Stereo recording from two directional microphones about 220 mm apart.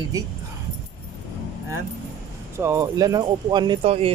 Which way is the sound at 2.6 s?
15° right (ahead or behind).